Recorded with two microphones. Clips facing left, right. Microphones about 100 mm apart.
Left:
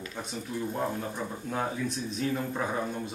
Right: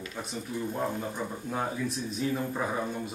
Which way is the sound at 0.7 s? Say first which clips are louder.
Even; centre (ahead or behind).